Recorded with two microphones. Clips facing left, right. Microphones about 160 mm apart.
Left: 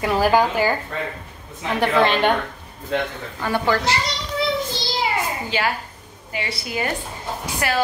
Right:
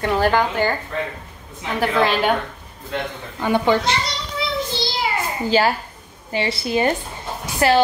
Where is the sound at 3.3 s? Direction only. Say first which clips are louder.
Right 3 dB; 20° right (ahead or behind).